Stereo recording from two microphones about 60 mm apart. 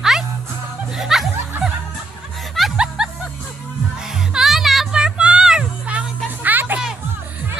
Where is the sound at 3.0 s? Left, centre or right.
Centre.